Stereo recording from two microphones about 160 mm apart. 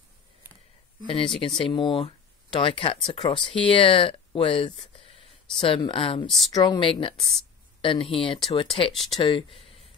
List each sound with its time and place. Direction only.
1.0 s speech: 35° left (ahead or behind)
6.2 s speech: centre (ahead or behind)
6.5 s speech: 30° left (ahead or behind)